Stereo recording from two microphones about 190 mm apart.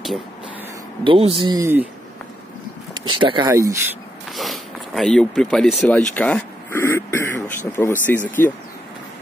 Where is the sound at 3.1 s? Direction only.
25° right (ahead or behind).